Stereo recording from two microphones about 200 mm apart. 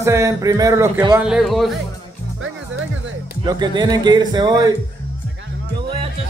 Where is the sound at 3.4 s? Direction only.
20° right (ahead or behind).